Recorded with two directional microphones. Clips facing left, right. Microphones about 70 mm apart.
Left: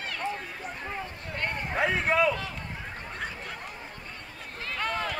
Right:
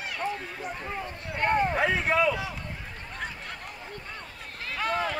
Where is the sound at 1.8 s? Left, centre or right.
Centre.